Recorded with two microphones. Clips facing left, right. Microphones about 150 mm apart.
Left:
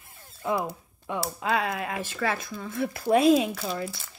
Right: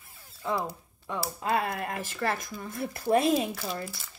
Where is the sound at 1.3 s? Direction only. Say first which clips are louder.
Left 1 dB; 80° left.